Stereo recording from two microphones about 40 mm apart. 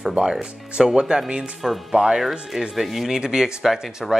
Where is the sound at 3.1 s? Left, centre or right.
Centre.